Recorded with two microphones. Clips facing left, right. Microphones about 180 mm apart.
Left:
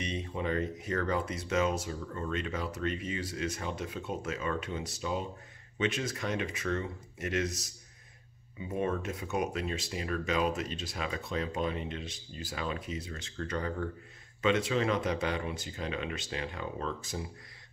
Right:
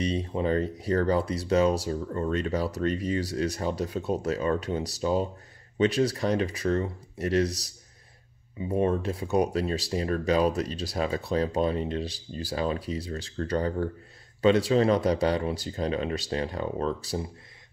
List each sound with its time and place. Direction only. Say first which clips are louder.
0.0 s speech: right 7 dB; 35° right (ahead or behind)